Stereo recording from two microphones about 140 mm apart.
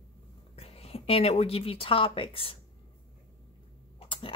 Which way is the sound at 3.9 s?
40° left (ahead or behind).